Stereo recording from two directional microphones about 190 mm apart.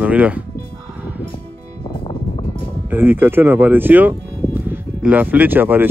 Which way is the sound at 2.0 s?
30° left (ahead or behind).